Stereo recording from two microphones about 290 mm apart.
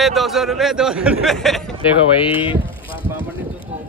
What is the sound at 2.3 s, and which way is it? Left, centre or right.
Speech, centre.